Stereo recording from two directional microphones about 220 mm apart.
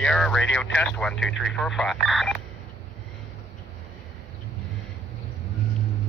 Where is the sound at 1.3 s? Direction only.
55° left (ahead or behind).